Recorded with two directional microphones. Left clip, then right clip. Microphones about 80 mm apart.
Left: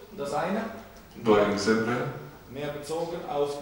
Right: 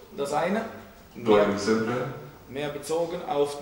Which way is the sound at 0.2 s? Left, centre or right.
Right.